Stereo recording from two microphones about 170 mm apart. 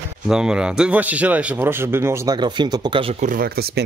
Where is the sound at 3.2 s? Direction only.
55° right (ahead or behind).